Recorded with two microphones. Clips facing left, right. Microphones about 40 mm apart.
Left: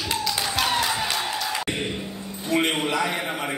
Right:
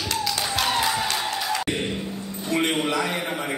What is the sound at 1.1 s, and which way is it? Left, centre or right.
Music, centre.